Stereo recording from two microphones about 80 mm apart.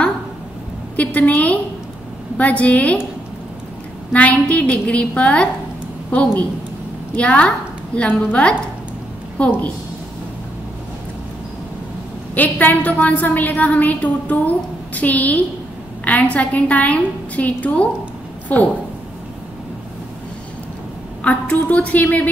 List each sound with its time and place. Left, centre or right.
0.9 s a woman's voice: centre
4.1 s a woman's voice: centre
12.4 s a woman's voice: left
21.2 s a woman's voice: centre